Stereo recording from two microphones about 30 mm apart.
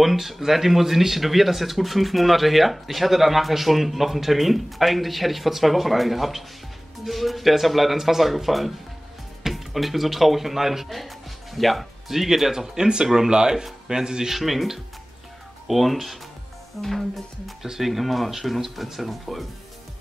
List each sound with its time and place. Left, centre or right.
0.0 s speech: centre
10.9 s music: centre
12.1 s speech: centre
14.3 s speech: centre
17.6 s speech: centre